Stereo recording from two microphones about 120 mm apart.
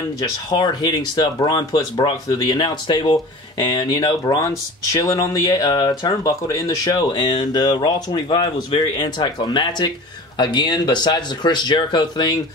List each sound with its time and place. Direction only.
0.2 s speech: 35° left (ahead or behind)
7.2 s speech: 40° left (ahead or behind)